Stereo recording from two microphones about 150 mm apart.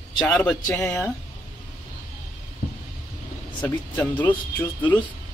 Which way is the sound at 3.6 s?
10° left (ahead or behind).